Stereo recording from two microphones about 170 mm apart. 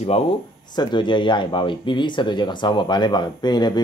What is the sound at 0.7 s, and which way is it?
Speech, 25° left (ahead or behind).